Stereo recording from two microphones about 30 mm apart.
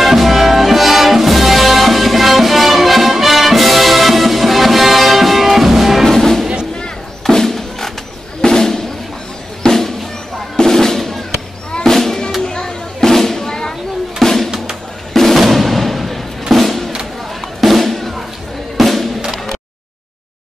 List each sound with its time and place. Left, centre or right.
0.0 s music: centre
6.0 s music: centre
7.2 s a sound: centre
8.4 s music: centre
11.8 s drum: centre
12.5 s music: left
13.1 s a sound: centre
13.5 s a sound: left
14.2 s music: centre
15.3 s music: centre